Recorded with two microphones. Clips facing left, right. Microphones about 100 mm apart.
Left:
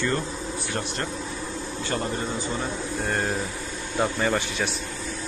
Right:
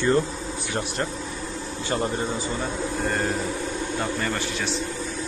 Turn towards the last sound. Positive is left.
turn(degrees=15)  # may be behind; listen again after turning